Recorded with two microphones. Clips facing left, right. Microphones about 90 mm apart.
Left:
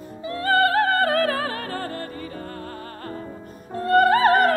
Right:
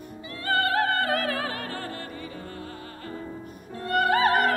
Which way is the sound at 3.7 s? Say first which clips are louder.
Left 7 dB; 40° left (ahead or behind).